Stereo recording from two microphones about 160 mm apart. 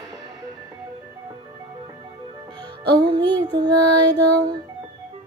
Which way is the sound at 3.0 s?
25° right (ahead or behind).